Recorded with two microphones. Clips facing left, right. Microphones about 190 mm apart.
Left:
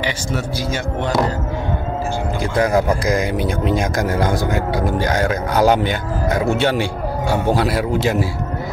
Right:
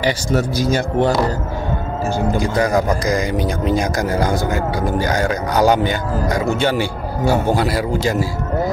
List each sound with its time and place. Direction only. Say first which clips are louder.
0.0 s speech: right 5 dB; 40° right (ahead or behind)
2.3 s a man's voice: left 2 dB; centre (ahead or behind)